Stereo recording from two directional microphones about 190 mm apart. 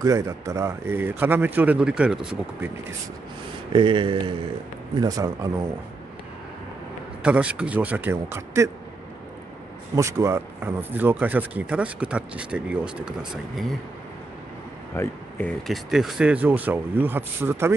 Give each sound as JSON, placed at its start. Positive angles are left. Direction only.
{"t": 0.0, "sound": "speech", "side_deg": -15}
{"t": 3.7, "sound": "speech", "side_deg": -25}
{"t": 7.2, "sound": "speech", "side_deg": -5}
{"t": 9.9, "sound": "speech", "side_deg": -15}
{"t": 15.0, "sound": "speech", "side_deg": 10}